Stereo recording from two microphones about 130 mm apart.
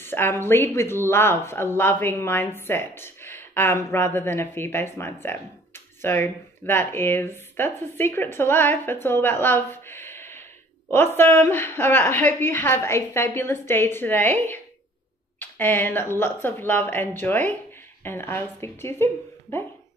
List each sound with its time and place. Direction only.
0.0 s speech: 15° left (ahead or behind)